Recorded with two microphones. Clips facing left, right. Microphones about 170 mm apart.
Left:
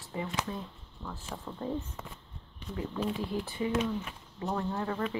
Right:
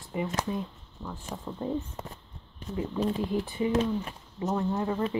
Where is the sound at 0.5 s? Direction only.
15° right (ahead or behind).